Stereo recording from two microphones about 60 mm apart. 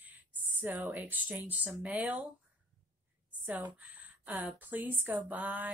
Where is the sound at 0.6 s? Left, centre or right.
Right.